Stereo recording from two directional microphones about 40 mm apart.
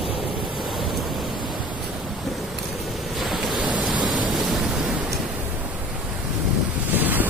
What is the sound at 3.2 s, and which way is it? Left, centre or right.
Ocean, centre.